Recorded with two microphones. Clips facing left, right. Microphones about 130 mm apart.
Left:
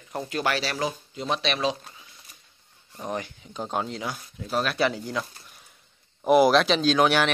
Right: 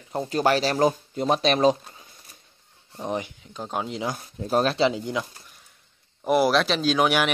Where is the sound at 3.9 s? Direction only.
25° right (ahead or behind).